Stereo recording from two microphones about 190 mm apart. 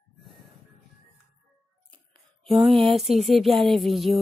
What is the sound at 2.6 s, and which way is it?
Speech, 25° right (ahead or behind).